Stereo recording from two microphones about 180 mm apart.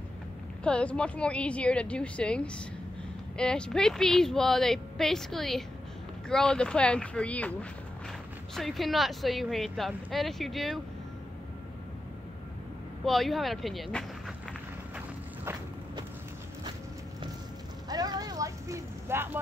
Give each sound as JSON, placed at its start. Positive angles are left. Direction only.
{"t": 0.7, "sound": "a woman's voice", "side_deg": 5}
{"t": 8.5, "sound": "a woman's voice", "side_deg": 0}
{"t": 13.0, "sound": "a woman's voice", "side_deg": 0}
{"t": 17.8, "sound": "a sound", "side_deg": -20}